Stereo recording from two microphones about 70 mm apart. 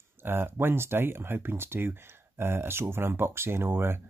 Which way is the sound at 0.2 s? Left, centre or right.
Right.